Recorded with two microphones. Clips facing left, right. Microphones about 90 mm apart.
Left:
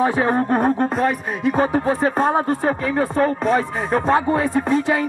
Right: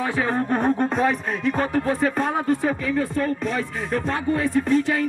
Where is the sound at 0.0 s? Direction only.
20° left (ahead or behind).